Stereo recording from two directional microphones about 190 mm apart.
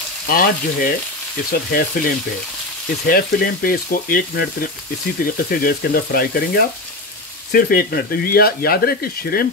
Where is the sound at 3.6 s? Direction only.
50° left (ahead or behind).